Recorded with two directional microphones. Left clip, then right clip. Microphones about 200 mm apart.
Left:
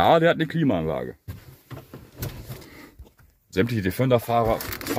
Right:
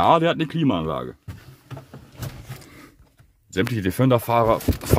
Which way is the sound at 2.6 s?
Centre (ahead or behind).